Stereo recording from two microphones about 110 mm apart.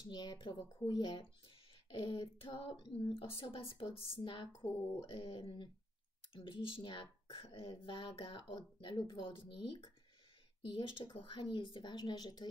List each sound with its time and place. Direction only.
0.0 s speech: 40° left (ahead or behind)
2.4 s speech: 50° left (ahead or behind)